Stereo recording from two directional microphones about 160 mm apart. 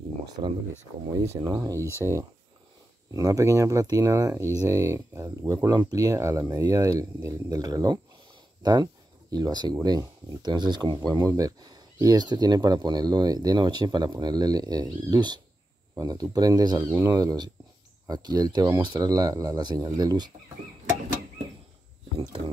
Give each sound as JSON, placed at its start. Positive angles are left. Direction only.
{"t": 0.4, "sound": "speech", "side_deg": -35}
{"t": 1.1, "sound": "speech", "side_deg": -20}